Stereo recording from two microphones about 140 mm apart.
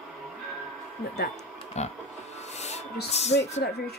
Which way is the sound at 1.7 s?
50° left (ahead or behind).